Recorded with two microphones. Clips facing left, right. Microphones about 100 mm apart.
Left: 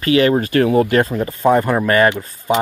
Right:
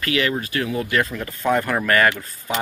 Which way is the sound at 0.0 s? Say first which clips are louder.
Left 9 dB; 35° left (ahead or behind).